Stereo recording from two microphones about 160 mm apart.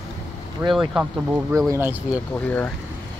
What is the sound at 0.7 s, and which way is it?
Speech, 5° right (ahead or behind).